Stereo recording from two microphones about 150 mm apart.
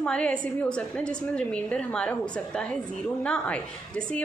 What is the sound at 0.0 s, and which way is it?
A woman's voice, 5° left (ahead or behind).